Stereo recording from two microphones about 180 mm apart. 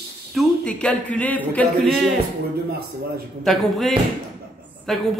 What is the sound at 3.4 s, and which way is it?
Speech, centre (ahead or behind).